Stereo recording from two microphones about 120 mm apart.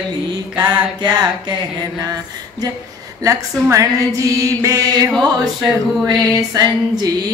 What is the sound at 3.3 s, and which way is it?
Mantra, 25° right (ahead or behind).